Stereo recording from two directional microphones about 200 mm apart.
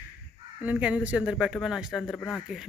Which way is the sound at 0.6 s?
5° right (ahead or behind).